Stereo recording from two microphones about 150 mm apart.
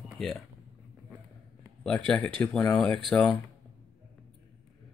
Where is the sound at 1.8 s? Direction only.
5° left (ahead or behind).